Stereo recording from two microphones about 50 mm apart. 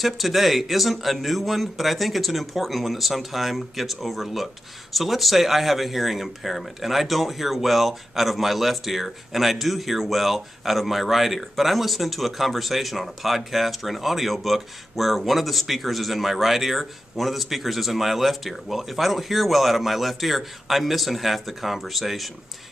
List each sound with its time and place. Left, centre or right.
0.0 s speech: centre